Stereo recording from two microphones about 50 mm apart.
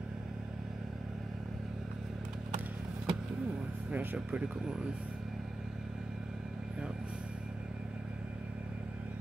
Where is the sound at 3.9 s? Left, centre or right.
Right.